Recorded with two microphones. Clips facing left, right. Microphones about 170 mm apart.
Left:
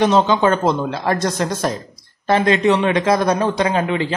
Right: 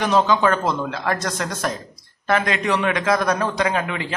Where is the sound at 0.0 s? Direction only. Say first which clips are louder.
Left 3 dB; 25° left (ahead or behind).